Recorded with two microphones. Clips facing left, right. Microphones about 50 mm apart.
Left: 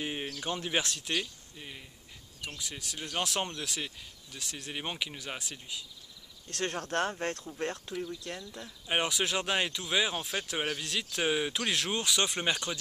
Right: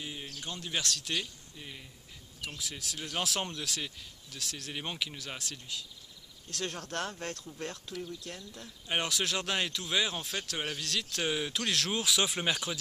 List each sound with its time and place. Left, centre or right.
0.0 s a sound: left
0.4 s speech: left; by 5.9 s centre
6.5 s speech: left
8.8 s speech: centre